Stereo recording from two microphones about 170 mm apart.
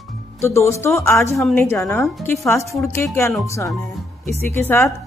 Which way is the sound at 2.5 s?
15° left (ahead or behind).